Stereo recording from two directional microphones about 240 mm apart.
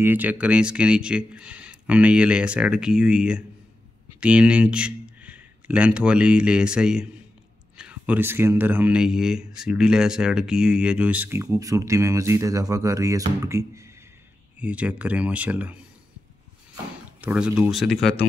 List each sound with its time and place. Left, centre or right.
0.0 s speech: centre
17.2 s speech: centre